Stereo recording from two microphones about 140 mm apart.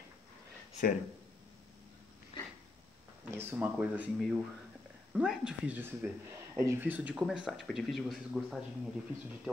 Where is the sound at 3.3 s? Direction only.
15° right (ahead or behind).